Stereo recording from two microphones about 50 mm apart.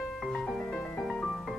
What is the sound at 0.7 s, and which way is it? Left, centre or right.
Music, centre.